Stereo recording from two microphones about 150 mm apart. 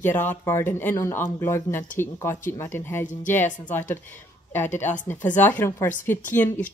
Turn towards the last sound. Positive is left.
turn(degrees=15)  # may be behind; listen again after turning